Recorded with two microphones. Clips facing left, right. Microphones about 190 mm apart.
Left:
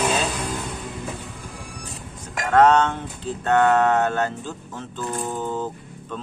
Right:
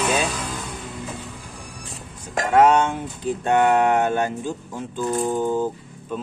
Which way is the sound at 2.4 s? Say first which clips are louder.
Even; 10° right (ahead or behind).